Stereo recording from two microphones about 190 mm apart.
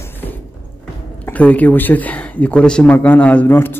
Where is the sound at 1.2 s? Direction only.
10° left (ahead or behind).